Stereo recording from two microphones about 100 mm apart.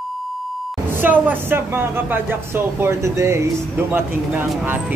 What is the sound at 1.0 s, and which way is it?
Speech, 20° right (ahead or behind).